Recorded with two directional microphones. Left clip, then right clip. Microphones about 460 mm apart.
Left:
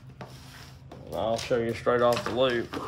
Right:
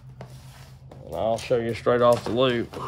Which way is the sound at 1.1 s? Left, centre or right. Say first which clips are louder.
Right 3 dB; centre.